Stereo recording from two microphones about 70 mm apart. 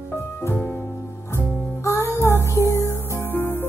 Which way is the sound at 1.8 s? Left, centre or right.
Left.